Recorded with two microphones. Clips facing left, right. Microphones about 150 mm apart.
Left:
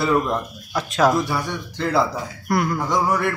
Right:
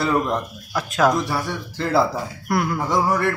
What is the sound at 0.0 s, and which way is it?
Speech, centre (ahead or behind).